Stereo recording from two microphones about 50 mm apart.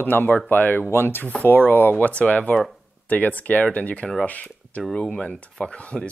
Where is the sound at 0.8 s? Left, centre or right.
Left.